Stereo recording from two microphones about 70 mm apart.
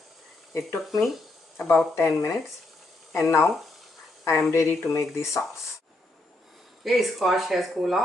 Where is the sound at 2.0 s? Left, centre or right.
Left.